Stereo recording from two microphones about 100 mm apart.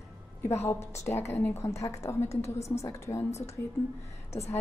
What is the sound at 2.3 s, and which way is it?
Speech, 90° left.